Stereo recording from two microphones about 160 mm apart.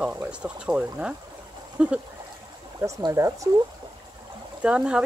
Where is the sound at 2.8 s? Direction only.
20° right (ahead or behind).